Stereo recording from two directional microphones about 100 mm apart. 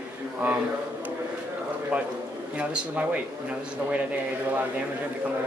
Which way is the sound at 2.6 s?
15° right (ahead or behind).